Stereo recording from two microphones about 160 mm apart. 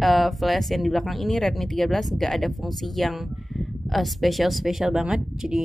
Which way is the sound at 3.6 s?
Centre (ahead or behind).